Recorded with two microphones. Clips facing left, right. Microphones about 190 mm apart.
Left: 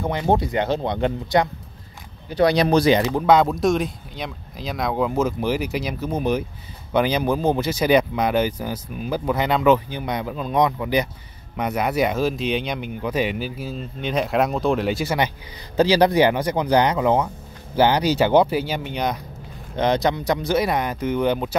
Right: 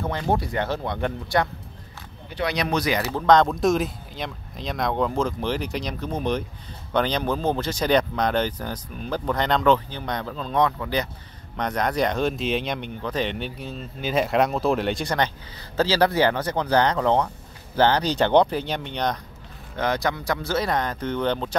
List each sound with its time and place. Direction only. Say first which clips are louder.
0.0 s speech: left 4 dB; 15° left (ahead or behind)
2.3 s speech: left 8 dB; 35° left (ahead or behind)
3.0 s speech: left 2 dB; 15° left (ahead or behind)
19.8 s speech: left 5 dB; 20° left (ahead or behind)